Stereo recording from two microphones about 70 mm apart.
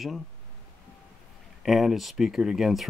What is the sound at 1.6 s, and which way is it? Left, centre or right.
Speech, centre.